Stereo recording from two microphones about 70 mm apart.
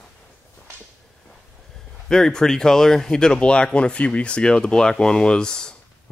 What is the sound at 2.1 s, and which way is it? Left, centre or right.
Speech, centre.